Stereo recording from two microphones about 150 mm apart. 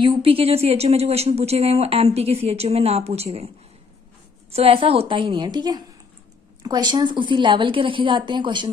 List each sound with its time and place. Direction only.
0.0 s speech: 35° right (ahead or behind)
4.5 s speech: 40° right (ahead or behind)